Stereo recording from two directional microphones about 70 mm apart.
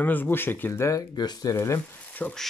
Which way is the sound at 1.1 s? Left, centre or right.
Left.